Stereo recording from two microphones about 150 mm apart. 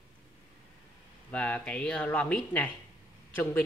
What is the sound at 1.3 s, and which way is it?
Speech, 10° left (ahead or behind).